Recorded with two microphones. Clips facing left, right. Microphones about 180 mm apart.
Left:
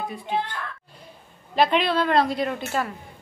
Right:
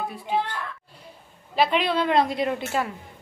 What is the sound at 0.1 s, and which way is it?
A woman's voice, 10° right (ahead or behind).